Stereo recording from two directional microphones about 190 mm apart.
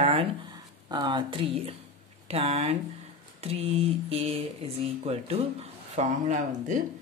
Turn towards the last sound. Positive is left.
turn(degrees=-40)  # may be behind; listen again after turning